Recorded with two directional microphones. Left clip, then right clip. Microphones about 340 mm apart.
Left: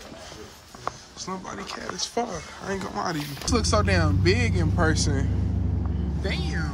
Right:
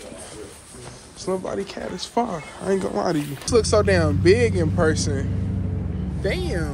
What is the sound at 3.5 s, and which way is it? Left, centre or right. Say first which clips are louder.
Speech: right 6 dB; centre.